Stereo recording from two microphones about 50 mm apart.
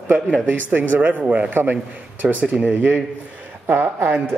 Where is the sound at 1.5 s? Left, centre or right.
Right.